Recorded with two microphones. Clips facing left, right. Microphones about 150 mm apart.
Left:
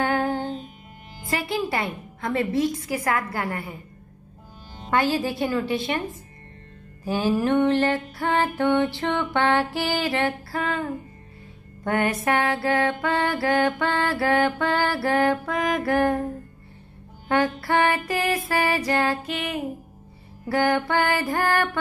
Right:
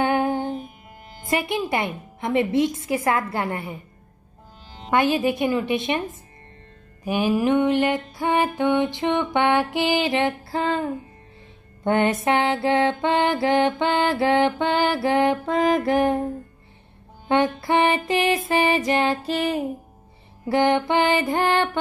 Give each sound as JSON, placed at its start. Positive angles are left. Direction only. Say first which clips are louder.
{"t": 0.0, "sound": "music", "louder": "right 2 dB", "side_deg": -20}
{"t": 4.8, "sound": "music", "louder": "right 3 dB", "side_deg": -20}
{"t": 7.1, "sound": "music", "louder": "right 2 dB", "side_deg": -15}
{"t": 17.3, "sound": "music", "louder": "right 2 dB", "side_deg": -20}
{"t": 19.2, "sound": "music", "louder": "right 6 dB", "side_deg": -35}
{"t": 20.4, "sound": "music", "louder": "right 3 dB", "side_deg": -20}